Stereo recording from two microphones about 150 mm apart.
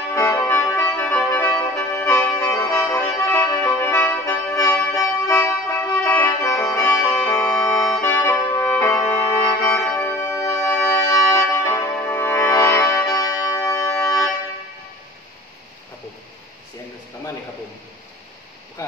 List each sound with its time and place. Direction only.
0.1 s music: 20° left (ahead or behind)